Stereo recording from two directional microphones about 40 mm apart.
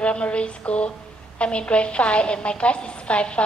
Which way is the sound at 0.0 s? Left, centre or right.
Left.